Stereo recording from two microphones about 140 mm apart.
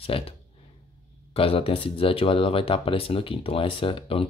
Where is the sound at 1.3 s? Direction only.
40° left (ahead or behind).